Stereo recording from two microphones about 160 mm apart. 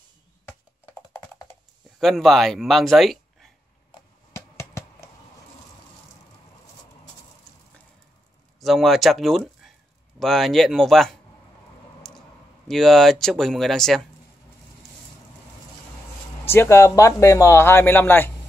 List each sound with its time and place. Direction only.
2.0 s speech: centre (ahead or behind)
4.4 s a sound: 15° left (ahead or behind)
8.5 s speech: centre (ahead or behind)
12.6 s speech: centre (ahead or behind)
16.4 s speech: 15° left (ahead or behind)